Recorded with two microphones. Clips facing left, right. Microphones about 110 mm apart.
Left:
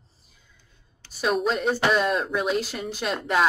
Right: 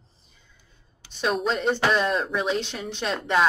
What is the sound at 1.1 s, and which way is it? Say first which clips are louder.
Speech: left 1 dB; 5° left (ahead or behind).